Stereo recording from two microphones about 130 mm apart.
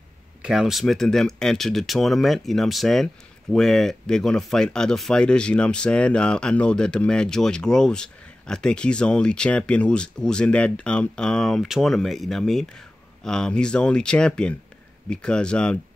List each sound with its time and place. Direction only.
0.4 s speech: centre (ahead or behind)